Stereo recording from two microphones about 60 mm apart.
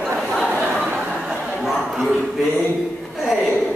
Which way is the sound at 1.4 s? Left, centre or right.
Centre.